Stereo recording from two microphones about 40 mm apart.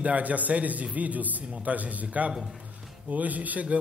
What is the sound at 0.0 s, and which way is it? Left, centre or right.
A man's voice, right.